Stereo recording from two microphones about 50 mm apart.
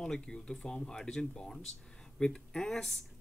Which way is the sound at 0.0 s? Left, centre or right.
Centre.